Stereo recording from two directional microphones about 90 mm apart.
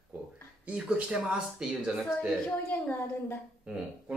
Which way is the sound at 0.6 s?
15° right (ahead or behind).